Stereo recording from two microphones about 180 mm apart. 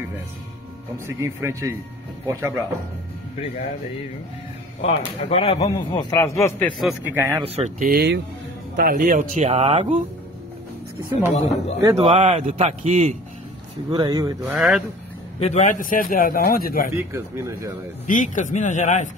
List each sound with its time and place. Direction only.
0.9 s speech: 15° right (ahead or behind)
4.8 s speech: 35° left (ahead or behind)
6.1 s a man's voice: 15° left (ahead or behind)
6.8 s a man's voice: centre (ahead or behind)
7.3 s a man's voice: 35° right (ahead or behind)
7.8 s speech: 60° right (ahead or behind); by 9.9 s 35° right (ahead or behind)
11.3 s speech: 35° left (ahead or behind)
12.1 s a man's voice: 40° right (ahead or behind)
13.8 s speech: 25° right (ahead or behind)
14.5 s a man's voice: 5° right (ahead or behind)
15.3 s a man's voice: 35° left (ahead or behind); by 16.9 s 55° left (ahead or behind)
16.9 s speech: 15° right (ahead or behind)
18.0 s a man's voice: 45° left (ahead or behind)